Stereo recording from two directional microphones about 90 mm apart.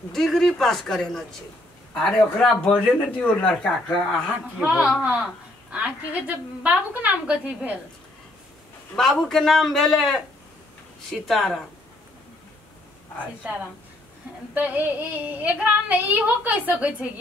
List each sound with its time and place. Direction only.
0.1 s a man's voice: 5° left (ahead or behind)
4.6 s a woman's voice: 10° right (ahead or behind)
8.9 s a man's voice: 5° left (ahead or behind)
14.5 s a woman's voice: 15° right (ahead or behind)